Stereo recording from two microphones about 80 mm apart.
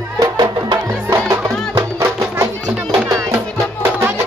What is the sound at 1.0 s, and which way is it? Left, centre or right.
Music, right.